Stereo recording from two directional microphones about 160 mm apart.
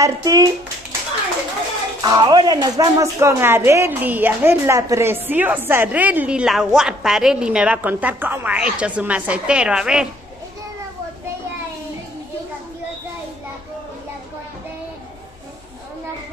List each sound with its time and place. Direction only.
0.0 s speech: 20° right (ahead or behind)
2.0 s speech: 25° right (ahead or behind); by 10.0 s 5° right (ahead or behind)